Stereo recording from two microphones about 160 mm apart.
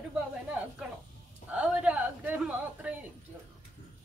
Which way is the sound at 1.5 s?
10° right (ahead or behind).